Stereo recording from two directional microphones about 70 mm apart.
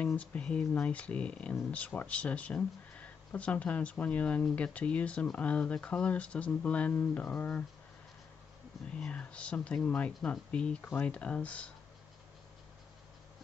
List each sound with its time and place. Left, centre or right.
0.0 s speech: left
8.9 s speech: centre